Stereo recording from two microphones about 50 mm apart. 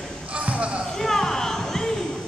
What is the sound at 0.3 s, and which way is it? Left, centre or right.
Basketball bounce, right.